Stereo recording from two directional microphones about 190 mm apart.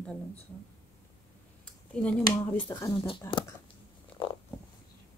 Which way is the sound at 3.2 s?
15° left (ahead or behind).